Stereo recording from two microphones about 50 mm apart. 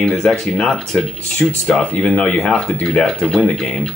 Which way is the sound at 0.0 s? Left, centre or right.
Centre.